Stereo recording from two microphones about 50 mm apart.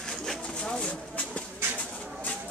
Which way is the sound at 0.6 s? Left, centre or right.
Centre.